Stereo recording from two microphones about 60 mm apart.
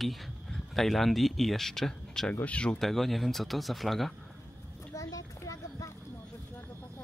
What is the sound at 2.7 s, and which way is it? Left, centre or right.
Speech, centre.